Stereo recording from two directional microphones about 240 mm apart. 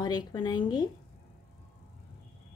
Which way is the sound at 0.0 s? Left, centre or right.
Centre.